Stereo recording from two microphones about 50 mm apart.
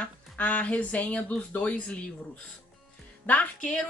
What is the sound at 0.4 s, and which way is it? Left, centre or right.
A woman's voice, left.